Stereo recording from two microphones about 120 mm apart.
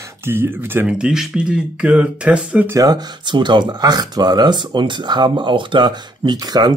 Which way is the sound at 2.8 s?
35° right (ahead or behind).